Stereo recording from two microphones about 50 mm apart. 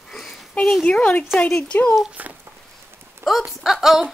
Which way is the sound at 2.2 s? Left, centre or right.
Right.